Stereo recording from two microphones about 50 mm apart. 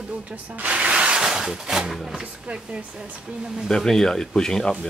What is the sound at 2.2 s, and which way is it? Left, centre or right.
Speech, right.